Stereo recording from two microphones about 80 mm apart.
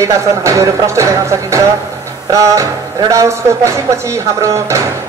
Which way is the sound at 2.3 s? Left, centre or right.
Right.